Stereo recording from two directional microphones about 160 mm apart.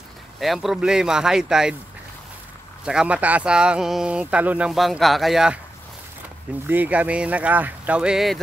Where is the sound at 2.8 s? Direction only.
5° right (ahead or behind).